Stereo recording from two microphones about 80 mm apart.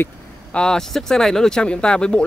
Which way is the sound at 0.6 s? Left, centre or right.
Centre.